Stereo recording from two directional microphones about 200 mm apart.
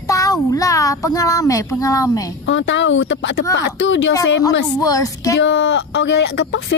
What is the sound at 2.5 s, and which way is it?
Speech, 70° left (ahead or behind).